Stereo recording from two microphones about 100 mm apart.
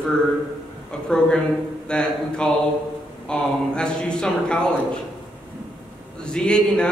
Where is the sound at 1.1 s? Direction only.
10° left (ahead or behind).